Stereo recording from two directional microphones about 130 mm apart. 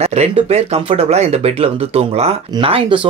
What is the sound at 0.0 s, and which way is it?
Speech, 55° right (ahead or behind).